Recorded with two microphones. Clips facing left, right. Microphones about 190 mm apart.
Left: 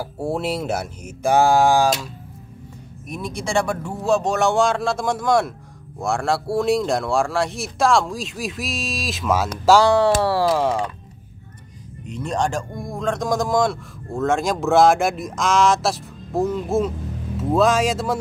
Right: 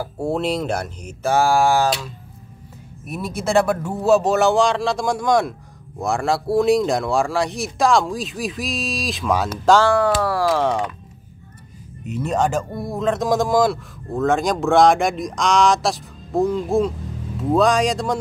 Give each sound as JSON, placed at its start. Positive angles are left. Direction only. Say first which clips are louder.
{"t": 0.0, "sound": "speech", "louder": "right 2 dB", "side_deg": 10}
{"t": 3.1, "sound": "speech", "louder": "right 4 dB", "side_deg": -5}
{"t": 9.8, "sound": "speech", "louder": "left 1 dB", "side_deg": 25}
{"t": 10.5, "sound": "speech", "louder": "even", "side_deg": 10}
{"t": 12.0, "sound": "speech", "louder": "right 3 dB", "side_deg": -5}